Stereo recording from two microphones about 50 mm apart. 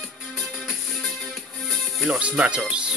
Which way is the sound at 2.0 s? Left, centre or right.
Right.